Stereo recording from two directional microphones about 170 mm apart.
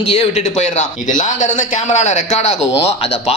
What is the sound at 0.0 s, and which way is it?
A man's voice, 35° left (ahead or behind).